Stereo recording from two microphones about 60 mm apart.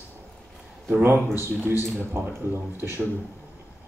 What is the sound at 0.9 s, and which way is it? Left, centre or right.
Speech, right.